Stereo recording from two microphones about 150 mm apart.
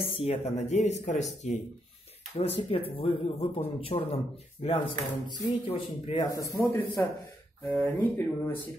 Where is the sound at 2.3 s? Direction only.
45° left (ahead or behind).